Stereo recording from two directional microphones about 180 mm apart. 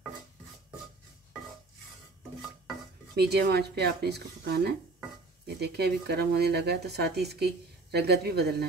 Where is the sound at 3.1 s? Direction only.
65° right (ahead or behind).